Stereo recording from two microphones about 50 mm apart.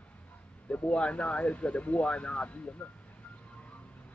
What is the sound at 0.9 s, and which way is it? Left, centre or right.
Speech, left.